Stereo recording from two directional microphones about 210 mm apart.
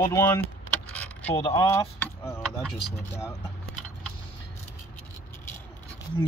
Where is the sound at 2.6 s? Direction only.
Centre (ahead or behind).